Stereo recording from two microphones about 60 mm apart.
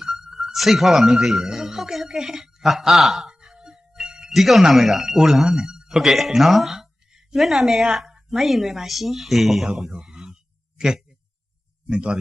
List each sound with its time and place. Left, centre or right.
0.0 s speech: centre
3.3 s speech: centre
10.0 s a sound: centre
11.9 s speech: centre